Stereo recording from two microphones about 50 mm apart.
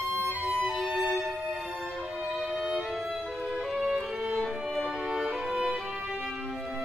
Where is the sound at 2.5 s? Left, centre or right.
Centre.